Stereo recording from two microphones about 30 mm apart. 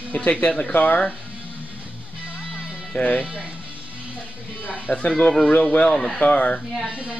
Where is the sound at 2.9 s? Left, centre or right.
Left.